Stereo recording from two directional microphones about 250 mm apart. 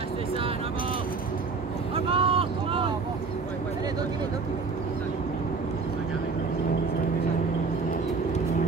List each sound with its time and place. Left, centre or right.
2.0 s vehicle: right